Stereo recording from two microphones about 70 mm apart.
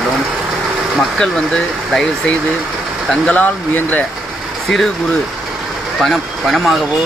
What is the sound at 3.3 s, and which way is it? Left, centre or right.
Speech, left.